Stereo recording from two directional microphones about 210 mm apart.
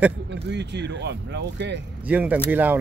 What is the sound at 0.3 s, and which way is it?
Speech, 55° right (ahead or behind).